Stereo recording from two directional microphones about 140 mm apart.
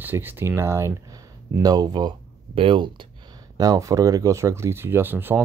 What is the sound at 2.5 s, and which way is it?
Speech, 40° right (ahead or behind).